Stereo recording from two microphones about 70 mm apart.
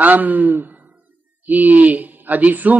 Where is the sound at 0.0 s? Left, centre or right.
Right.